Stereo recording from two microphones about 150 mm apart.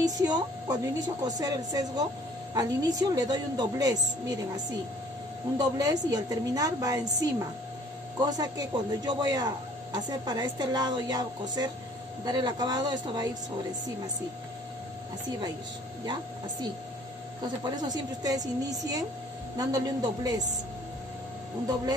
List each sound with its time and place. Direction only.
0.0 s speech: 25° right (ahead or behind)
5.6 s speech: 25° right (ahead or behind)
17.6 s speech: 25° right (ahead or behind)